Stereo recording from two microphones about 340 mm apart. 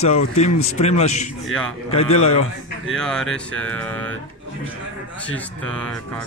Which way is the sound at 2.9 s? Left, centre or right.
Centre.